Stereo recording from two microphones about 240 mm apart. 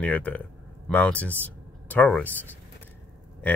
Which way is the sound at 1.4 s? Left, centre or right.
Centre.